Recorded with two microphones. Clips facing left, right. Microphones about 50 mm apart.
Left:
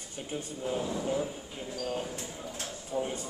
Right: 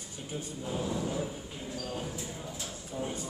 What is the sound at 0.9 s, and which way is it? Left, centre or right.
Speech, centre.